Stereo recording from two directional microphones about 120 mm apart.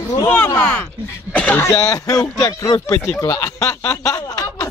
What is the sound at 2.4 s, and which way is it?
Speech, 30° left (ahead or behind).